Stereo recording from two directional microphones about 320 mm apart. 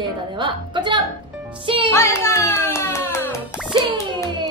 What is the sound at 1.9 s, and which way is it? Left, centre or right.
A child's voice, centre.